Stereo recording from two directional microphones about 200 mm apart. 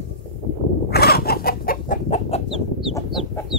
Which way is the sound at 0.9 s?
50° left (ahead or behind).